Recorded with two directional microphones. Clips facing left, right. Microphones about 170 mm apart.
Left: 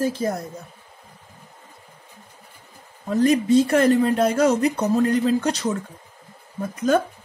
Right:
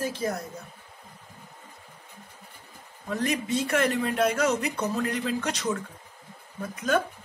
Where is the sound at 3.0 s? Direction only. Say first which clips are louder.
Left 10 dB; 35° left (ahead or behind).